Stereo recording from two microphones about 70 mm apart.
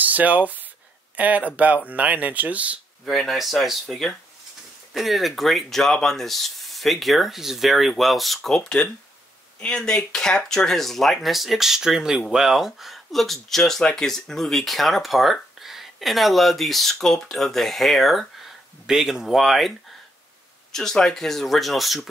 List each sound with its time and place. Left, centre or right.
0.0 s speech: right
3.1 s speech: centre
20.7 s speech: centre